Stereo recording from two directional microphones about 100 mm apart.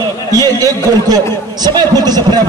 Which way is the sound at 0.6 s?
40° right (ahead or behind).